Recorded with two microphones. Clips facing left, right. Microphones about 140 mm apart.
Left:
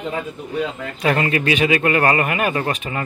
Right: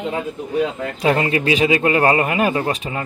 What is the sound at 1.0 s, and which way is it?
Speech, 25° right (ahead or behind).